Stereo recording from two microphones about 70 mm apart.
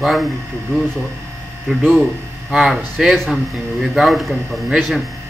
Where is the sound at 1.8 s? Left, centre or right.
Right; by 4.4 s centre.